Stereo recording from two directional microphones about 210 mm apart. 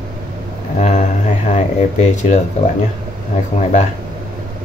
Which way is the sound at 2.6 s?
25° left (ahead or behind).